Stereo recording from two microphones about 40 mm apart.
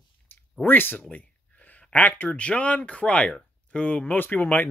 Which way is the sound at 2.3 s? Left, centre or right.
Left.